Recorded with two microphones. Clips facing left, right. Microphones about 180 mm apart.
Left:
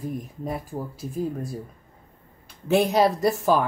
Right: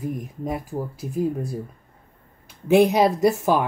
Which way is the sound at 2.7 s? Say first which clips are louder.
Right 4 dB; centre (ahead or behind).